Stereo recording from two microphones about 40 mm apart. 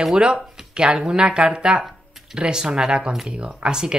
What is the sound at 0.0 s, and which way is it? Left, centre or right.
Speech, right.